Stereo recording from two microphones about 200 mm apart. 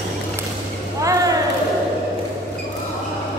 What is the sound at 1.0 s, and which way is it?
Basketball bounce, 15° right (ahead or behind).